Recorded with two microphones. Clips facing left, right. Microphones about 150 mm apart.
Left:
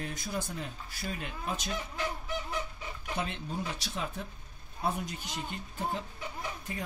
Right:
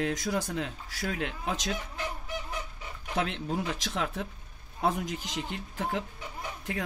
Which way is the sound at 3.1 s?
90° right.